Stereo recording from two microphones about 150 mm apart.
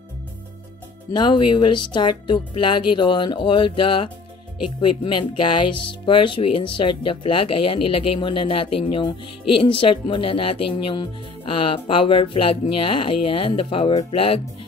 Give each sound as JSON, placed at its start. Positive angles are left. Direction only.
{"t": 1.1, "sound": "speech", "side_deg": 30}